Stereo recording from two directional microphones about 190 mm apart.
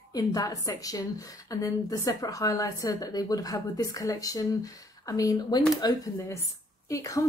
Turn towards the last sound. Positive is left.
turn(degrees=15)  # may be behind; listen again after turning